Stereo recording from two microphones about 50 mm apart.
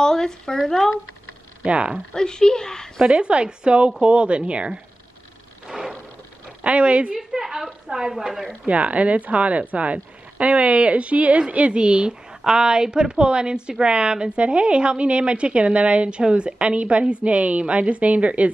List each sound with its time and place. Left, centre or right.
0.0 s speech: centre
1.6 s speech: right
2.1 s speech: centre
3.0 s a woman's voice: right
5.7 s a sound: centre
6.6 s a woman's voice: right
7.2 s a woman's voice: centre
8.6 s a woman's voice: right